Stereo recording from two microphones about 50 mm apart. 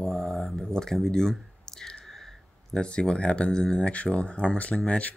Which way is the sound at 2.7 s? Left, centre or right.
Centre.